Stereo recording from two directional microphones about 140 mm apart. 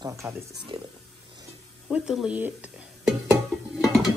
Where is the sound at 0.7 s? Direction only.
35° right (ahead or behind).